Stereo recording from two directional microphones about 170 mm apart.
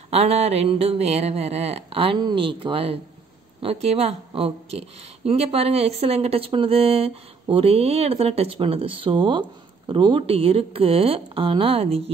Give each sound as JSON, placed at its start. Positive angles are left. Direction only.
{"t": 0.1, "sound": "speech", "side_deg": -35}